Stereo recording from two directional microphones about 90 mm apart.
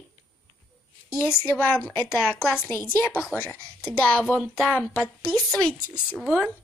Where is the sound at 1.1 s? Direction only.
25° left (ahead or behind); by 5.8 s 5° left (ahead or behind).